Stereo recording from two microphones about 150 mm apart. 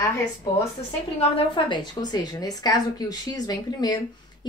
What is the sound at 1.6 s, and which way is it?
Speech, 30° left (ahead or behind).